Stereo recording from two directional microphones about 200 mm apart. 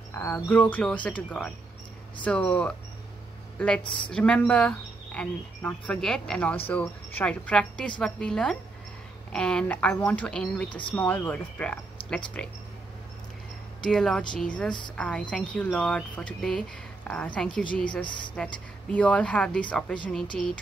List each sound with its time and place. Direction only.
0.1 s speech: 10° left (ahead or behind)
2.2 s speech: 5° left (ahead or behind)
10.7 s speech: 25° left (ahead or behind)
11.0 s speech: 10° left (ahead or behind)
13.8 s speech: 5° left (ahead or behind)